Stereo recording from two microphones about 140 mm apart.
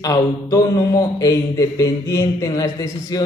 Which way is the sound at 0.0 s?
25° left (ahead or behind).